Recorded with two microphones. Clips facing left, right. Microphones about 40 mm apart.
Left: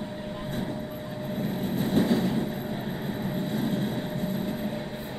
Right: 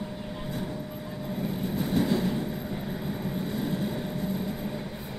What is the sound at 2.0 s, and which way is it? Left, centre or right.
Vehicle, left.